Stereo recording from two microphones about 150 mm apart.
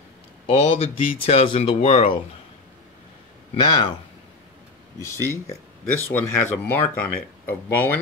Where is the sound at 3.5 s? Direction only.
30° left (ahead or behind).